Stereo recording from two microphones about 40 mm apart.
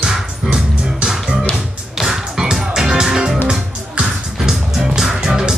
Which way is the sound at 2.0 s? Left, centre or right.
Centre.